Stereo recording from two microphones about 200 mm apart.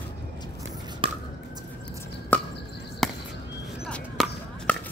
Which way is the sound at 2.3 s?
10° left (ahead or behind).